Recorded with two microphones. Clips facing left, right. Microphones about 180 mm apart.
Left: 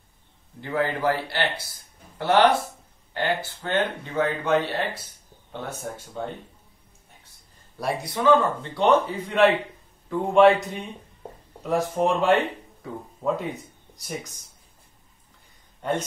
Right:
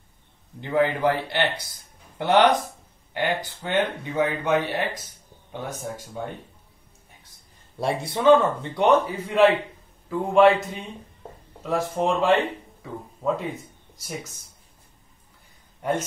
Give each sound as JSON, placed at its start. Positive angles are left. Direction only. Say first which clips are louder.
{"t": 0.6, "sound": "speech", "louder": "right 4 dB", "side_deg": -20}
{"t": 7.8, "sound": "speech", "louder": "right 3 dB", "side_deg": -25}
{"t": 8.7, "sound": "speech", "louder": "even", "side_deg": -10}